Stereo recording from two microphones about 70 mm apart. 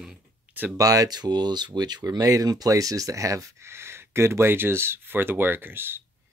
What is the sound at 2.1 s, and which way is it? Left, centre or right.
Speech, right.